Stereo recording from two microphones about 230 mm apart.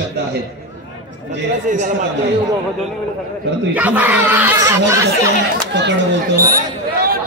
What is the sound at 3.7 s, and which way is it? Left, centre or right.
Speech, centre.